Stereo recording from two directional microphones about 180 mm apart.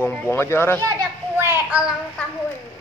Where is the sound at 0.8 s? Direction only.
20° right (ahead or behind).